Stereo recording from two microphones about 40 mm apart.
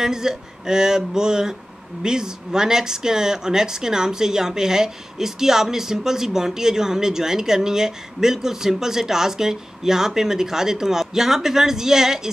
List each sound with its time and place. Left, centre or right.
0.0 s speech: centre